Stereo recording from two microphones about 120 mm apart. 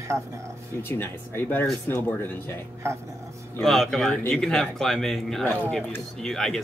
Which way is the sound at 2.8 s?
20° right (ahead or behind).